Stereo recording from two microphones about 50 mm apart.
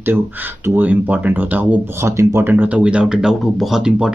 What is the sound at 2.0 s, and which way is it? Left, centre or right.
Speech, right.